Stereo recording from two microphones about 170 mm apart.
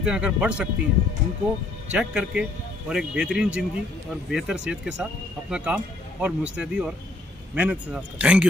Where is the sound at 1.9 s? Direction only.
5° right (ahead or behind).